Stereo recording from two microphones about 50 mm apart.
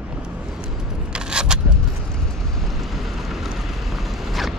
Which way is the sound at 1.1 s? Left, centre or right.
Centre.